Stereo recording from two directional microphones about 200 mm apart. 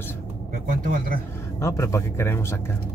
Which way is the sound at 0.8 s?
45° right (ahead or behind).